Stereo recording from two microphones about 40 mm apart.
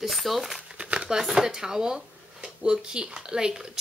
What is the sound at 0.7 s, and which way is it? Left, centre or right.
Crumpling, right.